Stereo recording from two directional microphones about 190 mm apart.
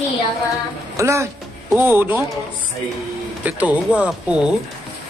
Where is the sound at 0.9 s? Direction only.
15° right (ahead or behind).